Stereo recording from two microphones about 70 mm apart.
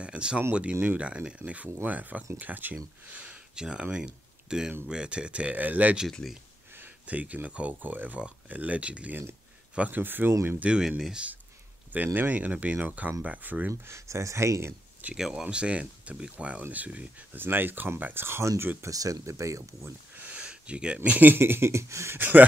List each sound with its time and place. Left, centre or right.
0.0 s speech: centre
6.2 s speech: centre
6.8 s speech: right
10.6 s speech: centre
11.9 s speech: right
13.8 s speech: right
15.1 s speech: centre
15.4 s speech: centre; by 18.9 s right
18.9 s speech: right
20.2 s speech: centre; by 22.2 s right